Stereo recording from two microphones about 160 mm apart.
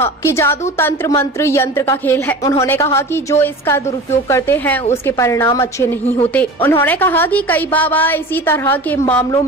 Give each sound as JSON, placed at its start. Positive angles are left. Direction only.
{"t": 0.0, "sound": "a woman's voice", "side_deg": 15}